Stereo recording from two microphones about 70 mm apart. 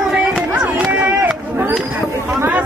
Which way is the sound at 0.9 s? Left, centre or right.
Right.